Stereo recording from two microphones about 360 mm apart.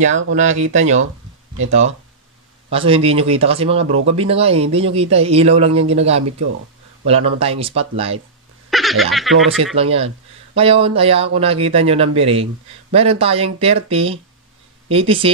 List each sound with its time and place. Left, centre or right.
0.3 s speech: centre
8.6 s laughter: centre
9.3 s speech: centre
9.8 s speech: centre